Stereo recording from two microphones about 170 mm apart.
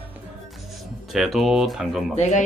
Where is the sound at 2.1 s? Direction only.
40° left (ahead or behind).